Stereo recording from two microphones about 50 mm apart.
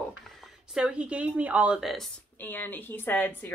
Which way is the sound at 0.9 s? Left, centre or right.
Right.